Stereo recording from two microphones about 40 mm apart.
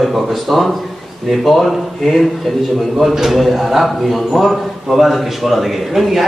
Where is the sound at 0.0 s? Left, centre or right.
Centre.